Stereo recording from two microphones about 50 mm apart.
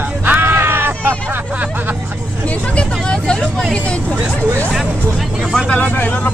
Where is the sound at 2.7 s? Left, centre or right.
Centre.